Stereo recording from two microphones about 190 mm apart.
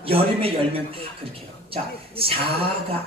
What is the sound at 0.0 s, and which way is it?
Speech, 30° right (ahead or behind).